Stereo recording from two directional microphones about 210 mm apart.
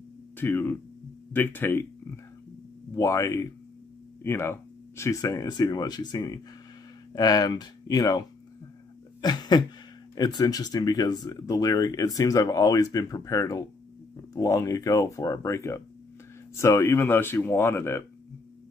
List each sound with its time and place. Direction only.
0.4 s speech: 10° left (ahead or behind)
2.9 s speech: 15° left (ahead or behind)
9.2 s a sound: 20° left (ahead or behind)
10.1 s speech: 20° left (ahead or behind)